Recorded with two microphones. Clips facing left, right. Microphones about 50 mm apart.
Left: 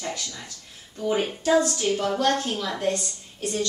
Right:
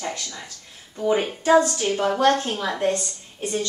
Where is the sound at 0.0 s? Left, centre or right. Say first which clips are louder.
Right 2 dB; centre.